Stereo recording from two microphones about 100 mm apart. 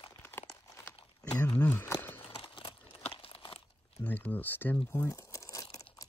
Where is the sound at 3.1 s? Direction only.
65° left (ahead or behind).